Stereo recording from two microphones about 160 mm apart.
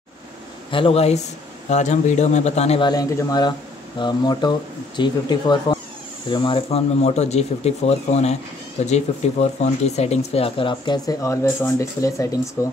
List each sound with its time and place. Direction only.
0.7 s speech: 35° left (ahead or behind)
2.8 s speech: 25° left (ahead or behind)